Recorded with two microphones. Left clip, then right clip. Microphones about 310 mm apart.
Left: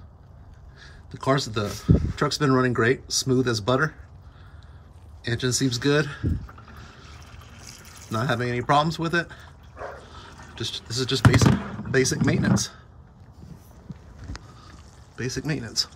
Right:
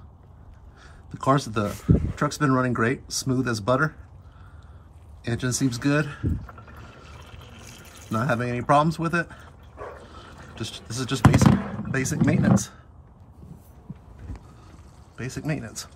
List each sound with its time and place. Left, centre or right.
1.2 s speech: centre
5.2 s speech: centre
7.2 s water: centre
8.1 s speech: centre
15.1 s speech: centre